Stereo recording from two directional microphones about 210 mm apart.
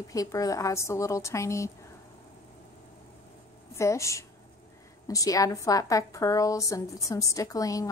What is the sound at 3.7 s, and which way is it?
A woman's voice, 15° left (ahead or behind).